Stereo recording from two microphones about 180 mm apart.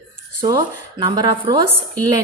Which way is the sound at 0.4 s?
25° right (ahead or behind).